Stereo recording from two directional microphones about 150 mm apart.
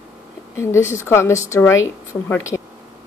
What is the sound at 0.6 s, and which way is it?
A woman's voice, 20° left (ahead or behind).